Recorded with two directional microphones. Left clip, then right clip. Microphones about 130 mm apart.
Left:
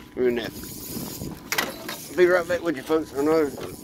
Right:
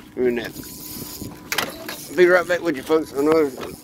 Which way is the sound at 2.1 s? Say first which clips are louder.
Right 4 dB; 60° right (ahead or behind).